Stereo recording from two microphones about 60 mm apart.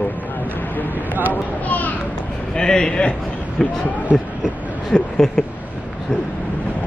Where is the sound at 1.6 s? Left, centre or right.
Left.